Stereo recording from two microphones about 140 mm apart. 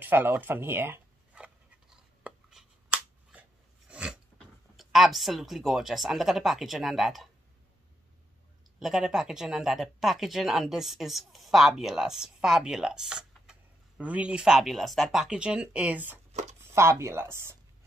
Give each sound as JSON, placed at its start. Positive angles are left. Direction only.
{"t": 0.0, "sound": "writing", "side_deg": -15}
{"t": 3.9, "sound": "filing", "side_deg": -5}
{"t": 4.7, "sound": "speech", "side_deg": 0}
{"t": 8.7, "sound": "speech", "side_deg": -5}